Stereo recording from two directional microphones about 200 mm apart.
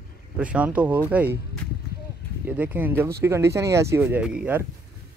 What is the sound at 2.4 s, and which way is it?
Speech, 10° right (ahead or behind).